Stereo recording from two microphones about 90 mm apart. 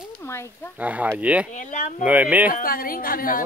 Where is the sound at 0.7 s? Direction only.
15° right (ahead or behind).